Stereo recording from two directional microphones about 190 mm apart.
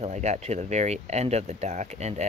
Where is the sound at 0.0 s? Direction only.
35° right (ahead or behind).